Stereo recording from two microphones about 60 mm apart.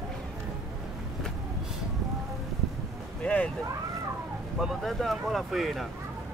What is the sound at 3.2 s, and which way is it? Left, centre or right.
Speech, left.